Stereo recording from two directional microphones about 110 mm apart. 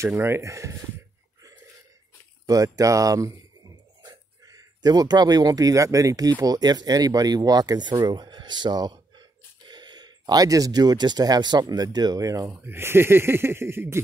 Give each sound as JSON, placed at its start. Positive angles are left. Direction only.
{"t": 0.0, "sound": "speech", "side_deg": -20}
{"t": 2.4, "sound": "speech", "side_deg": -35}
{"t": 12.4, "sound": "speech", "side_deg": -20}